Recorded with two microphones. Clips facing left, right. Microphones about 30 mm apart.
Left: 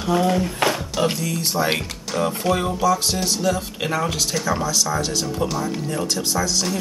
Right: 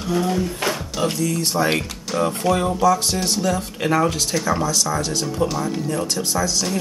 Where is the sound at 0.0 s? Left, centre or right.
Left.